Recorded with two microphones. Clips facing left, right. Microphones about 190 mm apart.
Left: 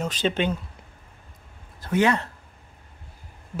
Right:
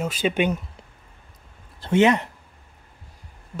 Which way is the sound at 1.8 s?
25° right (ahead or behind).